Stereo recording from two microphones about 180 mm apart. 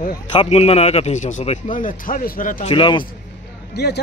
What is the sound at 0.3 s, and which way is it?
A man's voice, 30° left (ahead or behind).